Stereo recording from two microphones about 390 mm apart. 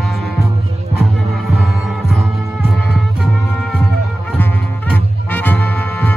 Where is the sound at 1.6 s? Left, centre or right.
Centre.